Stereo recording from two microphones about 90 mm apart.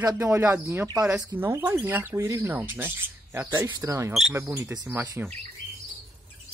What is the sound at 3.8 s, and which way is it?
Speech, 35° right (ahead or behind).